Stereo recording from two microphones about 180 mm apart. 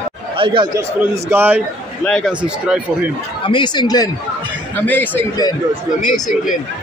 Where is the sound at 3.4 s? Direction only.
25° left (ahead or behind).